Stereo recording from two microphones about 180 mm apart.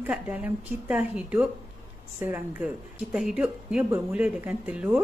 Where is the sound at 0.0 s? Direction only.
10° right (ahead or behind).